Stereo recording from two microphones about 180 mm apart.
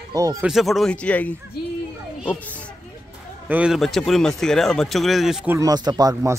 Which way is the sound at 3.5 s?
5° right (ahead or behind).